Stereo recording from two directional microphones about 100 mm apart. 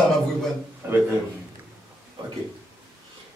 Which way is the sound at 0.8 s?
20° right (ahead or behind).